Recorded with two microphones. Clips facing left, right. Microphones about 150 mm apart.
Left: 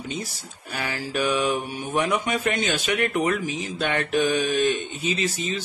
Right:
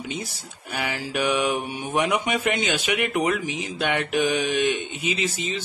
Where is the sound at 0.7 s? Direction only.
10° right (ahead or behind).